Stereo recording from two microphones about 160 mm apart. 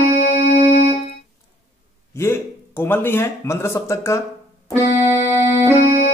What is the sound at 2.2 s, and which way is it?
Speech, 15° left (ahead or behind).